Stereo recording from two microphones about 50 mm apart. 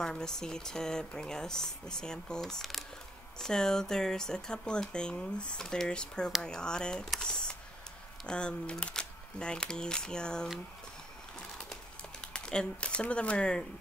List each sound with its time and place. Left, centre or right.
0.0 s speech: centre
2.4 s speech: centre
7.2 s camera: centre
8.3 s speech: centre
11.7 s a sound: centre